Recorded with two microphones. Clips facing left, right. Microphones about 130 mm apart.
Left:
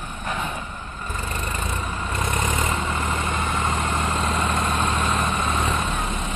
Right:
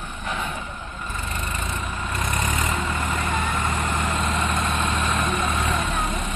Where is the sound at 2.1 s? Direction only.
25° left (ahead or behind).